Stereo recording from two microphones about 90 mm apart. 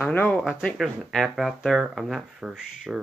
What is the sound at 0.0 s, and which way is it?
Speech, 20° left (ahead or behind).